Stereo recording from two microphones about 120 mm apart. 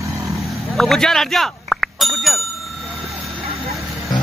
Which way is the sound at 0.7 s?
5° left (ahead or behind).